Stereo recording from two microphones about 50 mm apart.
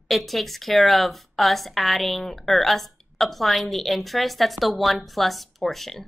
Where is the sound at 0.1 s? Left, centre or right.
Centre.